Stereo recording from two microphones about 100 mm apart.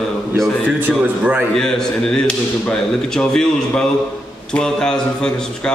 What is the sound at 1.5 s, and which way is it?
Speech, 5° left (ahead or behind).